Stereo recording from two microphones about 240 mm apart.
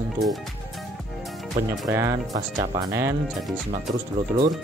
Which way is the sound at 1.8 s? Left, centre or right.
Centre.